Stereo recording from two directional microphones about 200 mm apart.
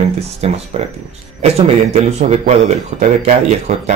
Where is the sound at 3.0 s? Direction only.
35° right (ahead or behind).